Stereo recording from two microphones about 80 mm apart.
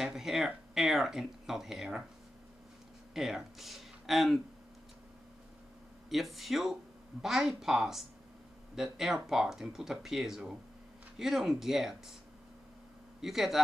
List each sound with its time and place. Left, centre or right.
0.0 s a sound: centre
0.7 s speech: centre
3.2 s speech: centre
6.0 s speech: centre
13.2 s speech: centre